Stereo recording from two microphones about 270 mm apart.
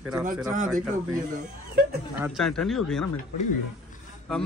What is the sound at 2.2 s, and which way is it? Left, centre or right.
Speech, centre.